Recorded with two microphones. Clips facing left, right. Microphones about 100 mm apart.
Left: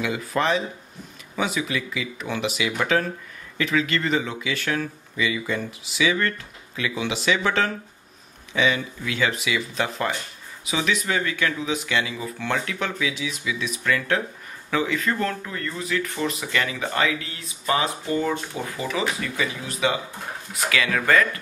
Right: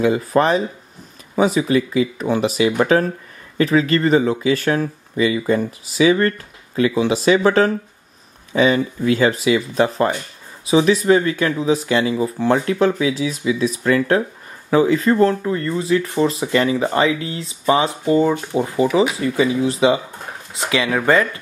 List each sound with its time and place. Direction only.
0.0 s speech: 40° right (ahead or behind)